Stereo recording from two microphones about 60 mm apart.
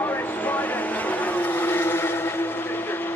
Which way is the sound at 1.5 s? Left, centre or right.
Left.